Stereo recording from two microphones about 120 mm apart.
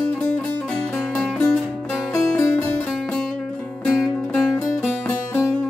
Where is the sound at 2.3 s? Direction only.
15° left (ahead or behind).